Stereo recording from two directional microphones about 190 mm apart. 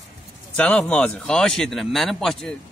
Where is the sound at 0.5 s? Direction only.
5° left (ahead or behind).